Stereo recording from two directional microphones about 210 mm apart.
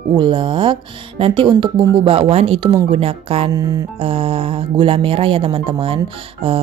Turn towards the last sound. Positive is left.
turn(degrees=-25)  # may be behind; listen again after turning